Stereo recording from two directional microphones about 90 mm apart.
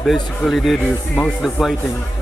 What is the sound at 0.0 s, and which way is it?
A man's voice, centre (ahead or behind).